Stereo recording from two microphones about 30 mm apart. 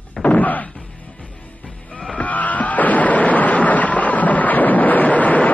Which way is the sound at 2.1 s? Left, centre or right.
Left.